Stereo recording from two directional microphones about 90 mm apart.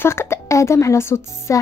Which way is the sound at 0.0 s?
30° left (ahead or behind).